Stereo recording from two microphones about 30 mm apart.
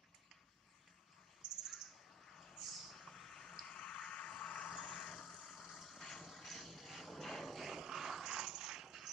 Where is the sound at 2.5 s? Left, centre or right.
Centre.